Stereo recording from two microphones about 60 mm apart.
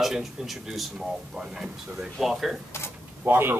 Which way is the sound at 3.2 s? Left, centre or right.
Right.